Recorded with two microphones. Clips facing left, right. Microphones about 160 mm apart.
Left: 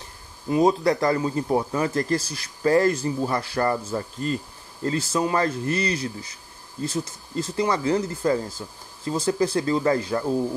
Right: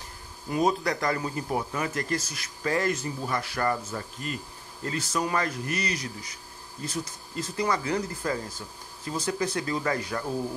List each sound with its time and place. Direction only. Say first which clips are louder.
0.5 s speech: left 6 dB; 25° left (ahead or behind)